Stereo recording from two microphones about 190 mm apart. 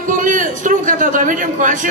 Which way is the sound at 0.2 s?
45° right (ahead or behind).